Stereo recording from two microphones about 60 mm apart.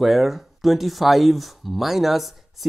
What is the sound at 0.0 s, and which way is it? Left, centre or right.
Speech, centre.